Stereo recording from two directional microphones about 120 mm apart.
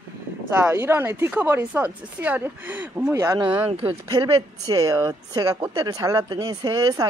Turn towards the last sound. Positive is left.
turn(degrees=-30)  # may be behind; listen again after turning